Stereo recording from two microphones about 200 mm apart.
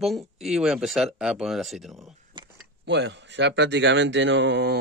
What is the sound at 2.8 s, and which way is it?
Speech, 60° right (ahead or behind).